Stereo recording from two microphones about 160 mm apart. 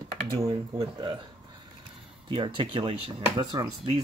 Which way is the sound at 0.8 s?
30° right (ahead or behind).